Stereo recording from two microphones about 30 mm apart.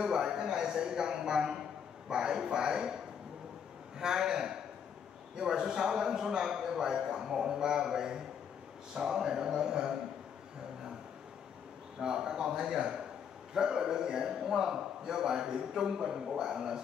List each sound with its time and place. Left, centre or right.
0.0 s a man's voice: right
4.0 s a man's voice: centre
12.0 s a man's voice: right